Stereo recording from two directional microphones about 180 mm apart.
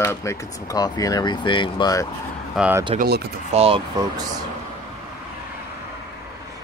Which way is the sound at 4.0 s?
20° right (ahead or behind).